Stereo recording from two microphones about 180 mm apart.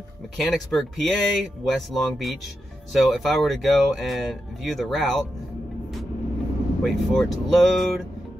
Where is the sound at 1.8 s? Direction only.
Centre (ahead or behind).